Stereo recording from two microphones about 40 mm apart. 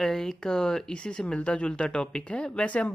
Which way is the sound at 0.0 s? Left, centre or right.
Centre.